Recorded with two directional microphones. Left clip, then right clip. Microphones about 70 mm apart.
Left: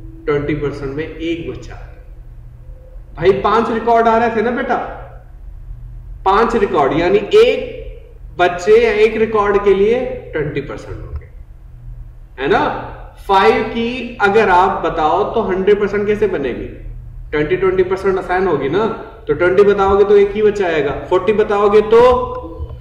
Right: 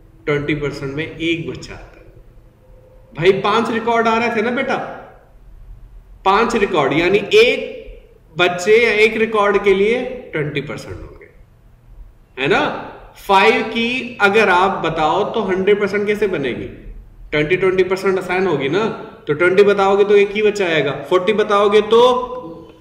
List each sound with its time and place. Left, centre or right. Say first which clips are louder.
0.2 s a man's voice: left 2 dB; centre
3.2 s a man's voice: left 2 dB; centre
6.3 s a man's voice: left 2 dB; centre
12.4 s a man's voice: left 2 dB; centre